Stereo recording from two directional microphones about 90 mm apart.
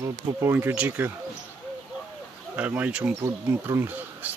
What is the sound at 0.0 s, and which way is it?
Speech, 35° right (ahead or behind).